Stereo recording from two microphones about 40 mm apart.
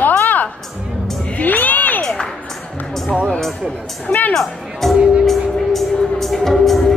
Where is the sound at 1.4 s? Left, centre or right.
Left.